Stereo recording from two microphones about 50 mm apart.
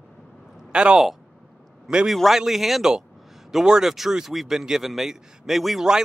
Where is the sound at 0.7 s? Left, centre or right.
Centre.